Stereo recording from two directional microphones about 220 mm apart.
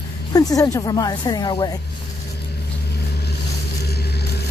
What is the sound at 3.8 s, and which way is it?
Vehicle, 45° left (ahead or behind).